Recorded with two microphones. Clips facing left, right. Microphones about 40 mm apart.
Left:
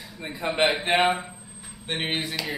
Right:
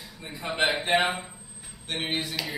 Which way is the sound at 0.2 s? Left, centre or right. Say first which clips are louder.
Left 6 dB; left.